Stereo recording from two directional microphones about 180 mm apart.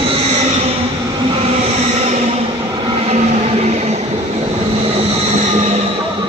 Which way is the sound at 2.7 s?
25° right (ahead or behind).